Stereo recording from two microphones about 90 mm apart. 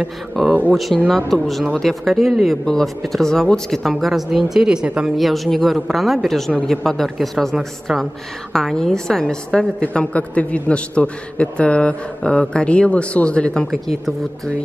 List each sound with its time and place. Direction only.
0.0 s a woman's voice: 5° right (ahead or behind)
5.1 s a woman's voice: centre (ahead or behind)